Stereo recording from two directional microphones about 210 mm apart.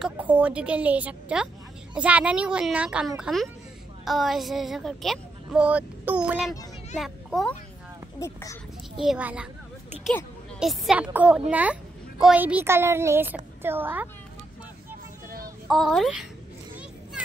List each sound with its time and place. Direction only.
0.0 s a woman's voice: 5° right (ahead or behind)
8.2 s speech: 15° left (ahead or behind)
8.9 s a woman's voice: centre (ahead or behind)
15.2 s child singing: 45° right (ahead or behind)
15.7 s a woman's voice: centre (ahead or behind)